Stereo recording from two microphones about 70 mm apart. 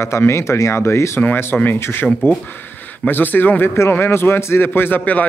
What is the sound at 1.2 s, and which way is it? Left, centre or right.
A man's voice, left.